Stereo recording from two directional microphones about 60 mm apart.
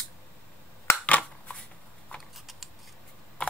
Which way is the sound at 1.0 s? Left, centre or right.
Left.